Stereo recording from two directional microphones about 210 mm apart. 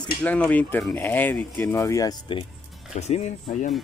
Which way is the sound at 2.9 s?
30° left (ahead or behind).